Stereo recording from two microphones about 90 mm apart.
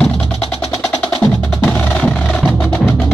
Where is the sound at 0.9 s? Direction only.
10° left (ahead or behind).